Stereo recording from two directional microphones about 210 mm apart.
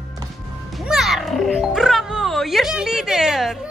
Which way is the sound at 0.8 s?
Centre (ahead or behind).